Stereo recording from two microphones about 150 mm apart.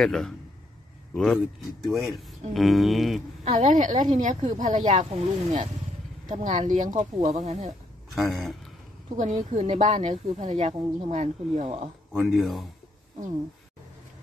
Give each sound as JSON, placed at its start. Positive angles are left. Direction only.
{"t": 0.0, "sound": "speech", "side_deg": 5}
{"t": 3.4, "sound": "speech", "side_deg": -55}
{"t": 8.1, "sound": "speech", "side_deg": 0}
{"t": 9.1, "sound": "speech", "side_deg": -55}
{"t": 12.4, "sound": "speech", "side_deg": 0}